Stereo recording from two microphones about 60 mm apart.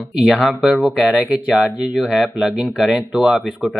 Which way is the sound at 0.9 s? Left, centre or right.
Centre.